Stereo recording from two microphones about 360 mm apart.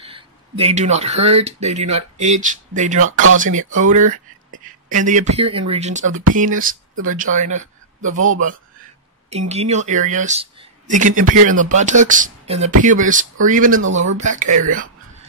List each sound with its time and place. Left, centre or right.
0.0 s speech: centre
3.1 s speech: right
3.3 s speech: right